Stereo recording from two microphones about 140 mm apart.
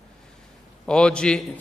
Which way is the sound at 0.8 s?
5° left (ahead or behind).